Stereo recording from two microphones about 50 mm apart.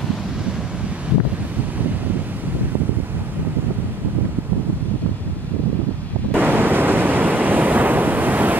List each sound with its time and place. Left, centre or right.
6.3 s waves: right